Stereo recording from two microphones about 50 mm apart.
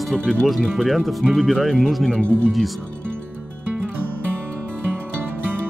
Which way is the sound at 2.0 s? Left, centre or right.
Left.